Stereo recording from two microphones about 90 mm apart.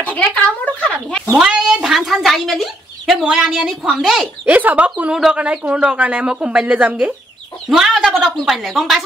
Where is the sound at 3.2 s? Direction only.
10° right (ahead or behind).